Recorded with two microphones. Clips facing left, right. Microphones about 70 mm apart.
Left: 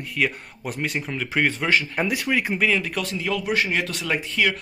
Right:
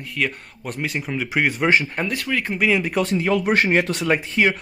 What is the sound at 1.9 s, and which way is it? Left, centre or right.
Speech, centre.